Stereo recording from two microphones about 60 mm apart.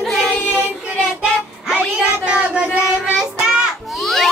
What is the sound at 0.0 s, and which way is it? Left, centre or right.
Child singing, centre.